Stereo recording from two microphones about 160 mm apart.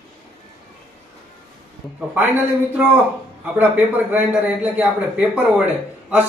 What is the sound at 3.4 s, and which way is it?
Speech, 10° right (ahead or behind).